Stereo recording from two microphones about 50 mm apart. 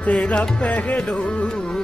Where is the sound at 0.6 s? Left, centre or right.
Left.